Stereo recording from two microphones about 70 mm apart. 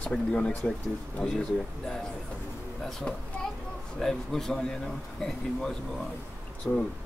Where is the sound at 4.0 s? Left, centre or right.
Centre.